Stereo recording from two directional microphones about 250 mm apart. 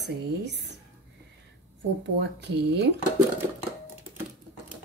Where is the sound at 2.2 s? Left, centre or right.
Right.